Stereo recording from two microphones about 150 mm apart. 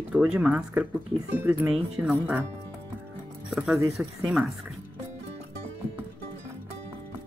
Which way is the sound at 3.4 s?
5° right (ahead or behind).